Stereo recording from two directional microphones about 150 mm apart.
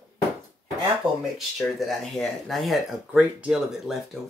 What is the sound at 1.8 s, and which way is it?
Speech, centre (ahead or behind).